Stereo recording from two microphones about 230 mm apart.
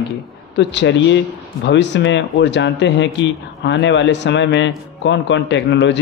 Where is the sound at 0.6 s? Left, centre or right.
Left.